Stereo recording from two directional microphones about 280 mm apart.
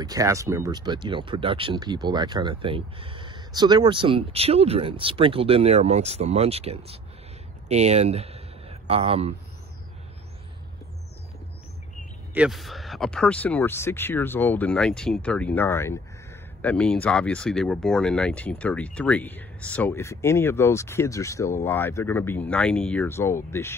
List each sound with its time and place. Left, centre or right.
0.0 s speech: centre
12.4 s speech: centre